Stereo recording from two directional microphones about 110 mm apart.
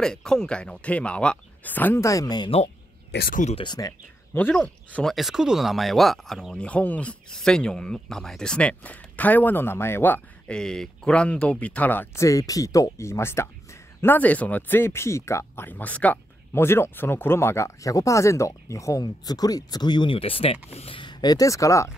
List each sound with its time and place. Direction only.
0.0 s speech: 5° left (ahead or behind)
2.0 s speech: 35° left (ahead or behind)
3.6 s speech: 40° left (ahead or behind)
4.3 s speech: 15° left (ahead or behind)
12.2 s speech: 30° left (ahead or behind)
20.2 s speech: 60° left (ahead or behind)
21.0 s speech: 40° left (ahead or behind)